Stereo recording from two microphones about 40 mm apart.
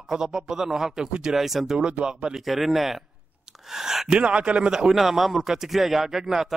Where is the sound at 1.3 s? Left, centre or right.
Centre.